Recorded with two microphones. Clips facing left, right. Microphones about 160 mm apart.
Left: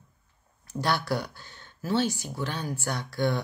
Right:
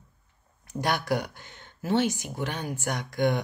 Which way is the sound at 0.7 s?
15° right (ahead or behind).